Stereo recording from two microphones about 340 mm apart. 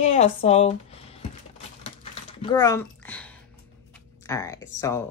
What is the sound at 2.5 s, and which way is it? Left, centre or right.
Speech, centre.